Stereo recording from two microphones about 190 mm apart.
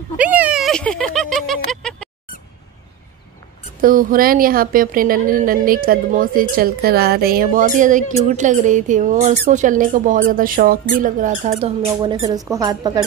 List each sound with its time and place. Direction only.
0.2 s speech: 10° right (ahead or behind)
3.8 s speech: 45° right (ahead or behind)
11.6 s speech: 30° right (ahead or behind)